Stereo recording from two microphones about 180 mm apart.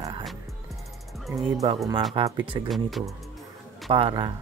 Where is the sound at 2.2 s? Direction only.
25° right (ahead or behind).